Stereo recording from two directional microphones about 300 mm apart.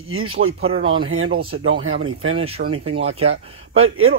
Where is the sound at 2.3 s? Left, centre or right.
Centre.